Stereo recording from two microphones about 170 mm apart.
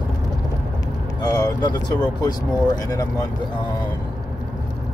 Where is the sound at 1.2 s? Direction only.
25° left (ahead or behind).